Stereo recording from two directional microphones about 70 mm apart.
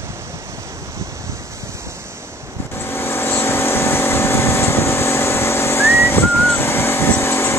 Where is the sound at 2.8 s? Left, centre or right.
Left.